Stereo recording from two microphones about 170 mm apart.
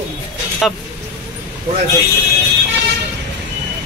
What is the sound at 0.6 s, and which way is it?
Speech, centre (ahead or behind).